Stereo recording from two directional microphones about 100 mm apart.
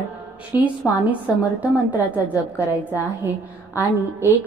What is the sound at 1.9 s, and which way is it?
A woman's voice, 15° right (ahead or behind).